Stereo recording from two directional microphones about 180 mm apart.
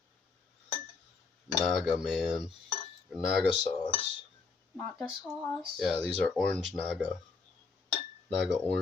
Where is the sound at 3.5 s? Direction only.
25° left (ahead or behind).